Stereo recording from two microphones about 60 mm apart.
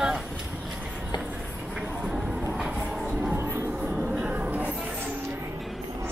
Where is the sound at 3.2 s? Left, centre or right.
Right.